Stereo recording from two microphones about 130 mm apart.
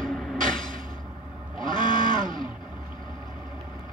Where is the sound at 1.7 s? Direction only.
90° right.